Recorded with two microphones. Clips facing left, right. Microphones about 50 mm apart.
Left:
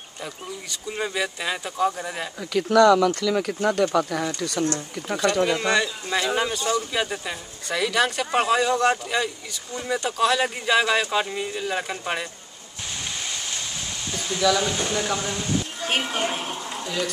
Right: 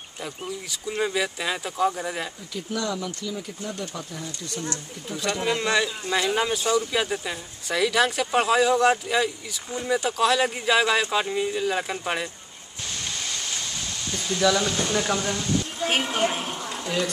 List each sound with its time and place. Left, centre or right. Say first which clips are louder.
0.2 s speech: right 1 dB; centre
2.5 s speech: left 14 dB; left
5.3 s speech: left 1 dB; centre
13.3 s waves: even; centre
14.1 s speech: even; centre